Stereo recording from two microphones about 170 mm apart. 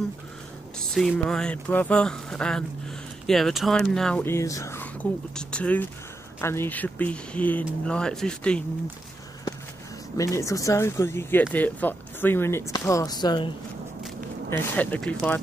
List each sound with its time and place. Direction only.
0.7 s speech: centre (ahead or behind); by 4.8 s 15° left (ahead or behind)
5.3 s speech: 5° left (ahead or behind)
10.1 s speech: 20° left (ahead or behind)
14.5 s speech: 10° left (ahead or behind)